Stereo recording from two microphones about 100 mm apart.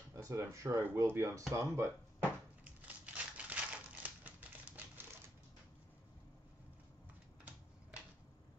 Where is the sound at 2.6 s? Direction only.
15° right (ahead or behind).